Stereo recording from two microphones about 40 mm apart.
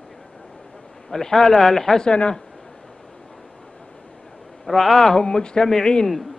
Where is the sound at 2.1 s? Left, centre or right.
Left.